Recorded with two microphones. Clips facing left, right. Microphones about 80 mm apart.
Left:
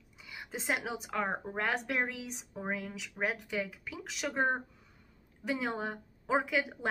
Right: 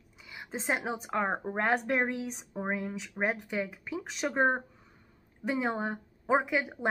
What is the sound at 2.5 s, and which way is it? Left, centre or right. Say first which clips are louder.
Speech: right 3 dB; right.